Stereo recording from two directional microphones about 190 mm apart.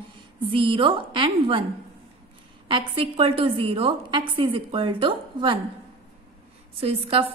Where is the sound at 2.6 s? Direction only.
25° right (ahead or behind).